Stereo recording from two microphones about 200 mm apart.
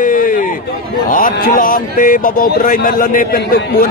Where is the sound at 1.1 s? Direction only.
45° left (ahead or behind).